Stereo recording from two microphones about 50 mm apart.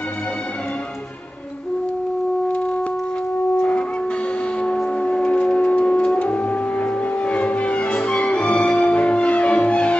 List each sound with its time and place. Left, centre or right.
5.0 s music: left